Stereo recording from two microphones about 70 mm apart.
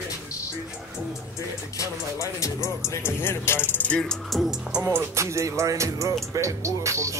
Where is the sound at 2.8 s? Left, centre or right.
Left.